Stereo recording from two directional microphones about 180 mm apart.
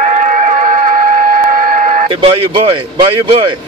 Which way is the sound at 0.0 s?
40° right (ahead or behind).